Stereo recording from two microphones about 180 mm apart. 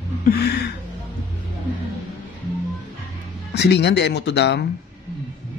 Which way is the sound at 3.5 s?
70° left (ahead or behind).